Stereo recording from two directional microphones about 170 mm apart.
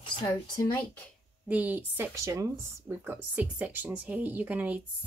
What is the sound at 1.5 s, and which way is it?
Speech, 10° right (ahead or behind).